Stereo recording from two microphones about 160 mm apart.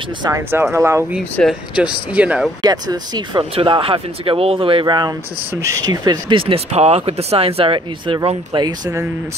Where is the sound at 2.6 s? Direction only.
25° right (ahead or behind).